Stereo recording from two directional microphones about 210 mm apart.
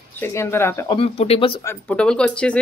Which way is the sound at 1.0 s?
30° left (ahead or behind).